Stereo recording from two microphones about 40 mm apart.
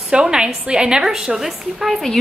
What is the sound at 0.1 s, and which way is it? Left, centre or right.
A woman's voice, right.